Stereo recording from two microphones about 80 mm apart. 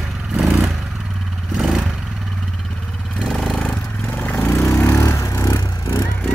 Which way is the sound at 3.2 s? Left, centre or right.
Centre.